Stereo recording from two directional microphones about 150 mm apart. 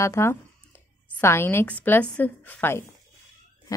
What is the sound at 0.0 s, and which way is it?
A woman's voice, 20° left (ahead or behind).